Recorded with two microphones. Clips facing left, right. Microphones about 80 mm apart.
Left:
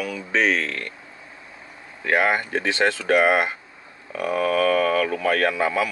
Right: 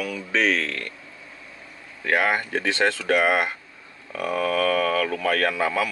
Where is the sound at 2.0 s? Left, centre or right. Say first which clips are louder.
Left 2 dB; centre.